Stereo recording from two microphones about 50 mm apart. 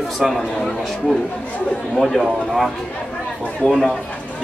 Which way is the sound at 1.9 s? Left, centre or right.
Centre.